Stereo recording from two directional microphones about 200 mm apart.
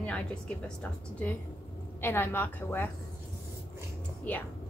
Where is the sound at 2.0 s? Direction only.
10° left (ahead or behind).